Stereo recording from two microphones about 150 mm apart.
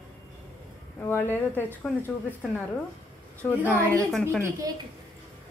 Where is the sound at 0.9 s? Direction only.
10° left (ahead or behind).